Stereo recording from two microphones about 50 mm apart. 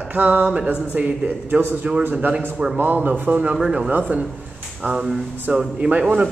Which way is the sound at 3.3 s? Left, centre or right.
Right.